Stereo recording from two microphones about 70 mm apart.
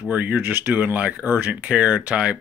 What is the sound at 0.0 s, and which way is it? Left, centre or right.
Speech, right.